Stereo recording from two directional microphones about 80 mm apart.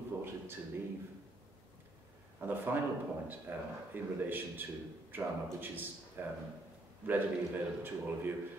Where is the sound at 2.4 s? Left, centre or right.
Right.